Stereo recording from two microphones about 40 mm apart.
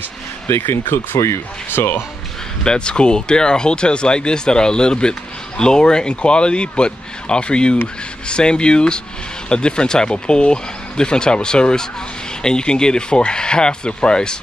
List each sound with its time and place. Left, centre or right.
0.6 s speech: left
2.6 s speech: left